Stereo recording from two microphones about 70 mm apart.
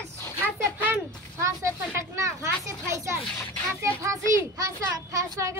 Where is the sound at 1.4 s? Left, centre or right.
Right.